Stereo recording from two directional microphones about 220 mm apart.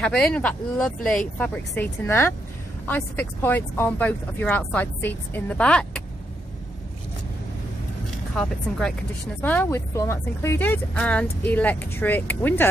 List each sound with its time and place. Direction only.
0.0 s speech: 5° left (ahead or behind)
8.4 s speech: centre (ahead or behind)